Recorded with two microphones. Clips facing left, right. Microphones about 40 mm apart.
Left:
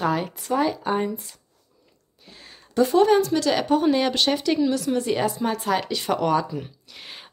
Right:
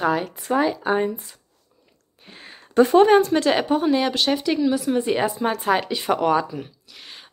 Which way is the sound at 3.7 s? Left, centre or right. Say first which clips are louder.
Even; centre.